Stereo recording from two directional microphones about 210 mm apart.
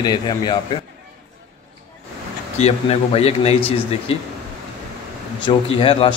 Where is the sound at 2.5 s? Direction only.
30° left (ahead or behind).